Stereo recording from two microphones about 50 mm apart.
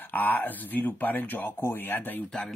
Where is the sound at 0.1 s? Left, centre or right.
Left.